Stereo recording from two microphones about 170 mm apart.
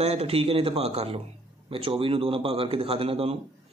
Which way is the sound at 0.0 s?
35° right (ahead or behind).